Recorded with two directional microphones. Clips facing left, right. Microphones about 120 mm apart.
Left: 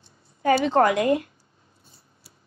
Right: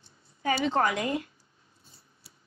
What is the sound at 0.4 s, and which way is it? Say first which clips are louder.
Speech: left 7 dB; 45° left (ahead or behind).